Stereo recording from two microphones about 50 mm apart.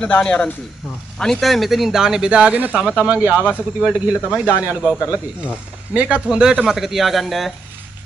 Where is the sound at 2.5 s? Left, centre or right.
Right.